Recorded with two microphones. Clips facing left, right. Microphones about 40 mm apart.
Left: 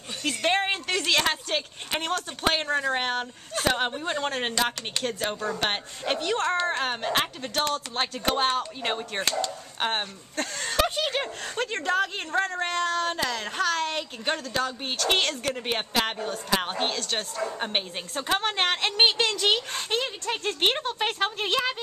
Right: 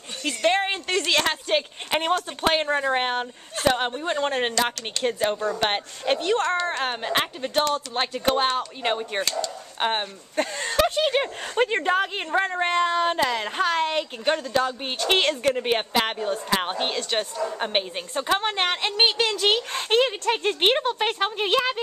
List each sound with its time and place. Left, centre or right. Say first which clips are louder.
0.2 s a sound: right 3 dB; centre
1.5 s speech: right 5 dB; centre
6.5 s a woman's voice: right 1 dB; centre
6.8 s speech: right 1 dB; centre
14.2 s a woman's voice: right 6 dB; centre
14.6 s a woman's voice: right 3 dB; centre
19.3 s speech: right 2 dB; centre
19.9 s speech: right 9 dB; right
20.4 s speech: right 3 dB; centre